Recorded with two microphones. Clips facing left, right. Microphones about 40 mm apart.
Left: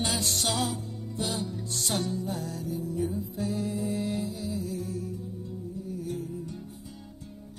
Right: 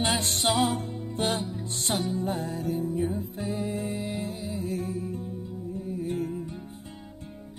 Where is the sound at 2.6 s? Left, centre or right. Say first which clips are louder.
Right 7 dB; right.